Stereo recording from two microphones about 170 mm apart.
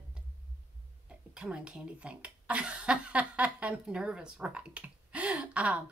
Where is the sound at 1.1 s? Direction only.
5° right (ahead or behind).